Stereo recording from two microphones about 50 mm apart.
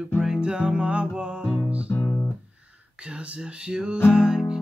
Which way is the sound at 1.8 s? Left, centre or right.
Left.